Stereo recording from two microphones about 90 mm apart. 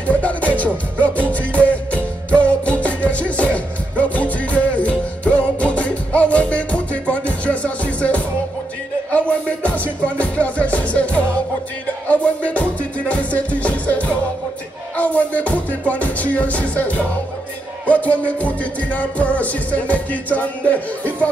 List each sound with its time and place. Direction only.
0.0 s music: 15° left (ahead or behind)